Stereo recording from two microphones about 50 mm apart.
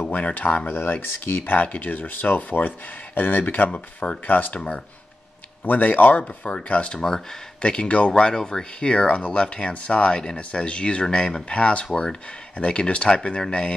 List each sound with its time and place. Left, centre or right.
0.1 s speech: left
4.6 s speech: left
5.6 s speech: left
7.0 s speech: centre
7.6 s speech: left